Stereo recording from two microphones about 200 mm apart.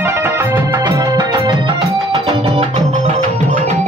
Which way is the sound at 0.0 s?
10° right (ahead or behind).